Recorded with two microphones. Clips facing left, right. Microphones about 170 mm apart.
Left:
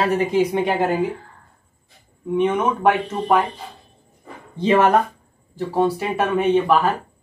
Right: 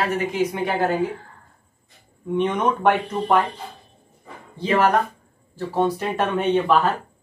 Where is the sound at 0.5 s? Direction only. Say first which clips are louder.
Left 3 dB; 25° left (ahead or behind).